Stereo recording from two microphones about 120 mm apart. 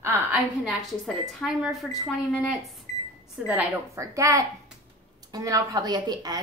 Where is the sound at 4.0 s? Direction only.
25° right (ahead or behind).